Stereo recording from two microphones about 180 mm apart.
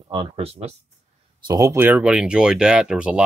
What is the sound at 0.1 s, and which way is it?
Speech, 30° right (ahead or behind).